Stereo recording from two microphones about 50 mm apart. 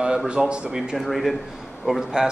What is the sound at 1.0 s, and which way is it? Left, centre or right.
Speech, centre.